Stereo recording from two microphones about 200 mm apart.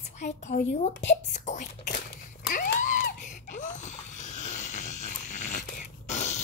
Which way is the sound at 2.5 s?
40° left (ahead or behind).